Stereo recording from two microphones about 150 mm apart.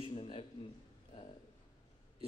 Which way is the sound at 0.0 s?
35° left (ahead or behind).